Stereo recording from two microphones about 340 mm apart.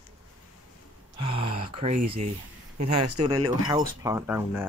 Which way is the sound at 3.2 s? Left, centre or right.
Centre.